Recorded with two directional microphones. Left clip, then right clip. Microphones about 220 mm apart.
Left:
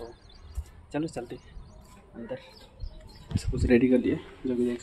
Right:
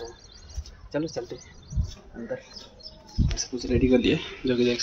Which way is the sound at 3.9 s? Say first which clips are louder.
Right 4 dB; 5° left (ahead or behind).